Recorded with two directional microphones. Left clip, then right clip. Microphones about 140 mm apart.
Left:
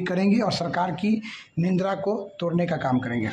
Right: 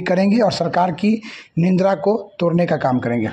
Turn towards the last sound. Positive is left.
turn(degrees=-35)  # may be behind; listen again after turning